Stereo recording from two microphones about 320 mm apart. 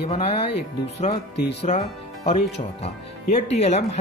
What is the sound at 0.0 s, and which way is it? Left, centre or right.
Speech, centre.